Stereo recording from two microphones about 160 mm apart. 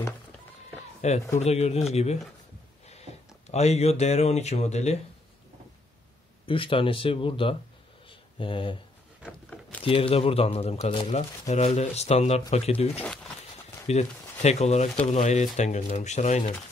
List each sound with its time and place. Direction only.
1.0 s speech: 45° left (ahead or behind)
6.4 s speech: 35° left (ahead or behind)
8.1 s a sound: 30° left (ahead or behind)
9.2 s speech: 5° right (ahead or behind)
9.8 s speech: 35° left (ahead or behind)
13.0 s speech: 5° left (ahead or behind)
13.8 s speech: 40° left (ahead or behind)